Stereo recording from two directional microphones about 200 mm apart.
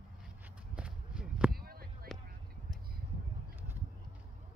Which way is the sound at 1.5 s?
50° right (ahead or behind).